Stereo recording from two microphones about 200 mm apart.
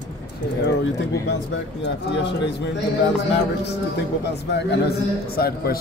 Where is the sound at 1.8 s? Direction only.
60° left (ahead or behind).